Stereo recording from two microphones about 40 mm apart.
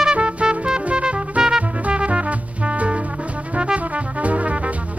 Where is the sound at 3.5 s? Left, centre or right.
Right.